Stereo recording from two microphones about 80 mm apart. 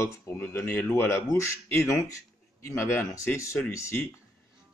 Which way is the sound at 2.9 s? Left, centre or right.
Left.